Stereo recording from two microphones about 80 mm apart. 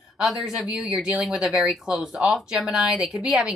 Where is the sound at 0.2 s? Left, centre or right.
Centre.